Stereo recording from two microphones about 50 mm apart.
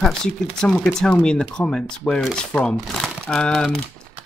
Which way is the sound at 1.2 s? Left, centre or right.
Centre.